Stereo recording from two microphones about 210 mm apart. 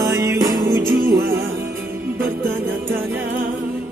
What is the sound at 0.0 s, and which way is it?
Music, 15° right (ahead or behind).